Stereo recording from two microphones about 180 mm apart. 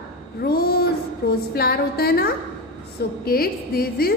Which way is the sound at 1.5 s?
60° left (ahead or behind).